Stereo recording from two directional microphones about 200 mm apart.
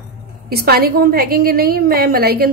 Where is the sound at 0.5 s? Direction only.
50° right (ahead or behind).